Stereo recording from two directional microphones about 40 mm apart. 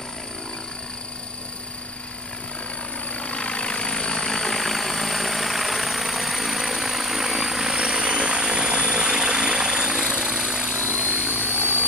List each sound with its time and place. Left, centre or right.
3.1 s vehicle: left; by 10.9 s centre
11.1 s vehicle: left
11.5 s vehicle: right